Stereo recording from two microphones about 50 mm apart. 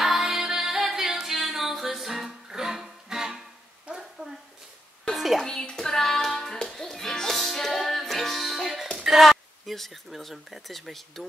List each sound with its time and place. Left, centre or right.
0.0 s music: centre
3.8 s a sound: centre
5.1 s music: centre
5.4 s music: centre
8.8 s a sound: centre
9.2 s a woman's voice: centre